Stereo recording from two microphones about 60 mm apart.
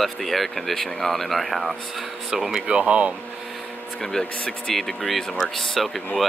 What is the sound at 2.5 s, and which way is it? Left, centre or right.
Speech, centre.